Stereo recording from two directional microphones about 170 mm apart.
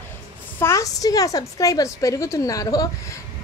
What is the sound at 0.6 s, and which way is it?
A woman's voice, 15° left (ahead or behind).